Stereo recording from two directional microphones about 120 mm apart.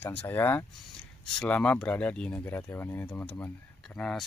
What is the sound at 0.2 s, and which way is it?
Speech, 15° left (ahead or behind).